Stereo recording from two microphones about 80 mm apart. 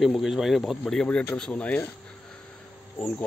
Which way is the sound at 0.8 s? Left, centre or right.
Centre.